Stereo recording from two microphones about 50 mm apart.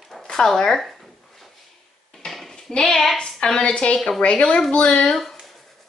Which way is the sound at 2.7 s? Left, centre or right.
Centre.